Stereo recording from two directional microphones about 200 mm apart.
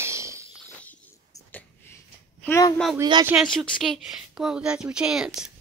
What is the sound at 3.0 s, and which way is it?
Speech, 20° right (ahead or behind).